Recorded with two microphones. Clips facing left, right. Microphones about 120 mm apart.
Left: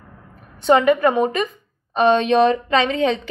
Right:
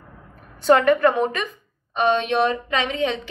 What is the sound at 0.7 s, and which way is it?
Speech, 10° left (ahead or behind).